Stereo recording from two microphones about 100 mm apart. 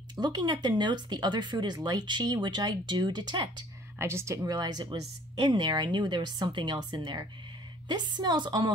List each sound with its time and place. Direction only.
0.1 s speech: 45° right (ahead or behind)
4.0 s speech: 25° right (ahead or behind); by 8.7 s 50° right (ahead or behind)